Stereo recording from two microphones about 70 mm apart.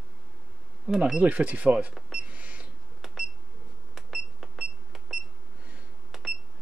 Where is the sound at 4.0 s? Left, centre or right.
Centre.